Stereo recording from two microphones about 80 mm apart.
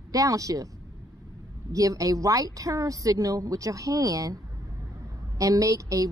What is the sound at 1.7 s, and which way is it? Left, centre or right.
A woman's voice, right.